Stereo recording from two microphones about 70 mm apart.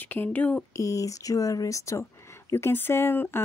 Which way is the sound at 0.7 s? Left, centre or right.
Left.